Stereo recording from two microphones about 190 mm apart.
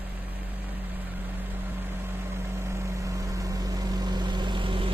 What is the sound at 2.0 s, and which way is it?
Vehicle, 15° right (ahead or behind).